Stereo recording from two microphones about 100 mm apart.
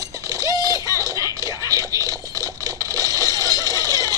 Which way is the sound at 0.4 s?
35° right (ahead or behind).